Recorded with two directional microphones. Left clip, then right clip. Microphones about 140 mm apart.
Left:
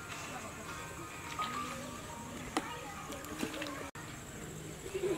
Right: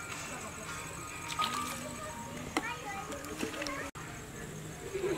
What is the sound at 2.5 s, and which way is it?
Music, 10° left (ahead or behind).